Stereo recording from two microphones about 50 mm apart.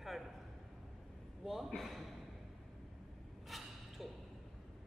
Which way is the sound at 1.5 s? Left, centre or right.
Centre.